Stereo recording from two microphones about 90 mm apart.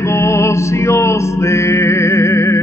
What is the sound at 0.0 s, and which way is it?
Music, 30° left (ahead or behind).